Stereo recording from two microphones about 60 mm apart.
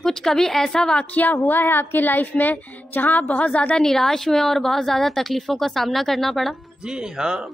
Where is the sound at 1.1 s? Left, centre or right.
Left.